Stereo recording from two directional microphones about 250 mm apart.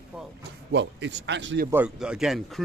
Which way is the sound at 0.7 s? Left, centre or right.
Right.